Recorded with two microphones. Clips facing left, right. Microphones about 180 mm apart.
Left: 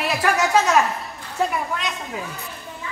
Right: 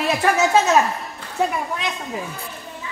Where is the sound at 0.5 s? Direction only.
25° right (ahead or behind).